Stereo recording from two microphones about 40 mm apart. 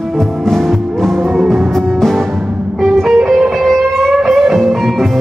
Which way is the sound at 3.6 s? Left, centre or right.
Centre.